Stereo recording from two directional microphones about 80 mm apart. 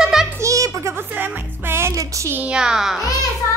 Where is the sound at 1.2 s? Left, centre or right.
Right.